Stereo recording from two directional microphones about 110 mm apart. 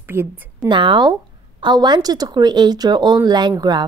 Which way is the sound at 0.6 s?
45° right (ahead or behind).